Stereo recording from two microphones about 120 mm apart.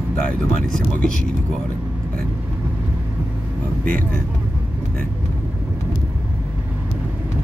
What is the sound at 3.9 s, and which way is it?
Speech, 10° left (ahead or behind).